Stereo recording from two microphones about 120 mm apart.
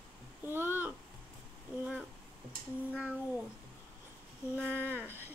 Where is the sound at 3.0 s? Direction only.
10° right (ahead or behind).